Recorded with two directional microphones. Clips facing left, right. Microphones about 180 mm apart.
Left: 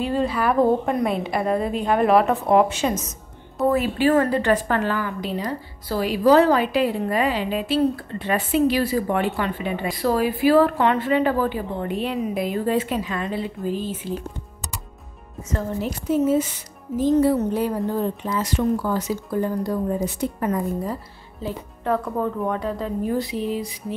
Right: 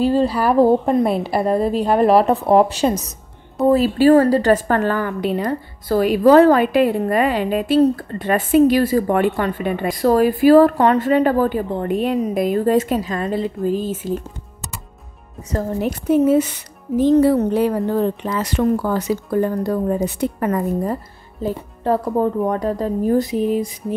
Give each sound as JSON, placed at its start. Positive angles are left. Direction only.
{"t": 0.0, "sound": "a woman's voice", "side_deg": -35}
{"t": 15.8, "sound": "speech", "side_deg": -65}
{"t": 21.8, "sound": "a woman's voice", "side_deg": -30}